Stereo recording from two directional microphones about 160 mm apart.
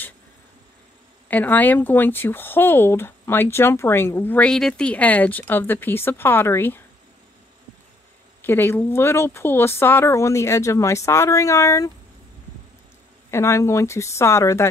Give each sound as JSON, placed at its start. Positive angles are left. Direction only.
{"t": 1.3, "sound": "speech", "side_deg": 10}
{"t": 8.5, "sound": "speech", "side_deg": 15}
{"t": 13.3, "sound": "speech", "side_deg": 15}